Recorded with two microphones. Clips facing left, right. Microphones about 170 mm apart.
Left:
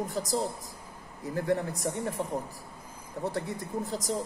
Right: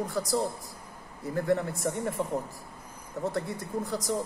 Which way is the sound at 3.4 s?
20° left (ahead or behind).